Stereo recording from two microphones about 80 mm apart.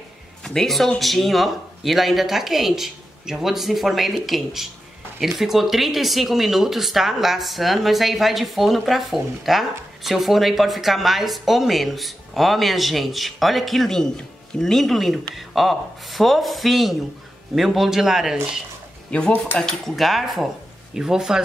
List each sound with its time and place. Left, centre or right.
0.4 s speech: centre
19.0 s speech: centre
19.3 s speech: left
19.6 s speech: centre